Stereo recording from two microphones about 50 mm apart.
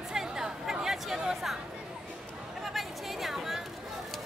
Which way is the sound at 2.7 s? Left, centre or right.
Centre.